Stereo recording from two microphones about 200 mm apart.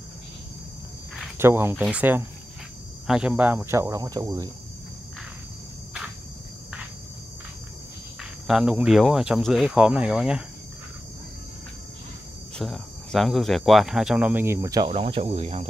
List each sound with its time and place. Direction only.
1.4 s speech: 10° right (ahead or behind)
8.2 s speech: 5° right (ahead or behind)
12.5 s speech: centre (ahead or behind); by 14.9 s 15° right (ahead or behind)
14.9 s speech: 30° right (ahead or behind)